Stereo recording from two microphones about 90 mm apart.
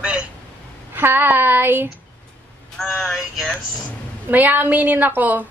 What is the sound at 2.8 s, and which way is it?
Speech, centre (ahead or behind).